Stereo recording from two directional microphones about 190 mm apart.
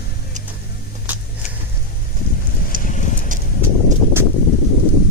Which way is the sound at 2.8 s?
45° left (ahead or behind).